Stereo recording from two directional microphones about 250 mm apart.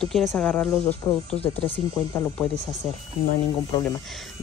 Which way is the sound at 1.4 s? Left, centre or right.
Left.